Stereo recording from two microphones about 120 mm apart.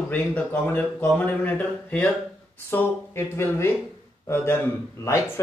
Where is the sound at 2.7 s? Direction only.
20° left (ahead or behind).